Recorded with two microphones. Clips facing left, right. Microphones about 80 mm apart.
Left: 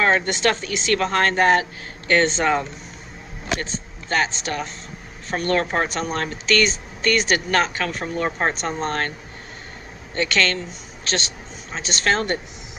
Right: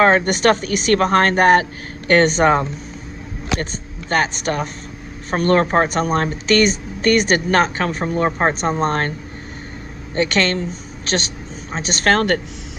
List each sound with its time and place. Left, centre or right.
0.2 s speech: right
4.1 s a woman's voice: right
8.5 s a woman's voice: right
10.1 s a woman's voice: right
11.7 s speech: right